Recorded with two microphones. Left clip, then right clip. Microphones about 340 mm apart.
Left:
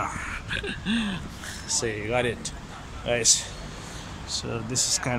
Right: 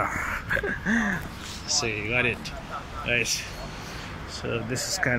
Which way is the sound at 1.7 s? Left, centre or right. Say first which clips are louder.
Right 2 dB; left.